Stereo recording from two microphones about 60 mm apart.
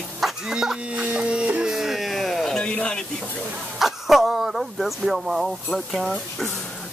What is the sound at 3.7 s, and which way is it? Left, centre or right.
Speech, centre.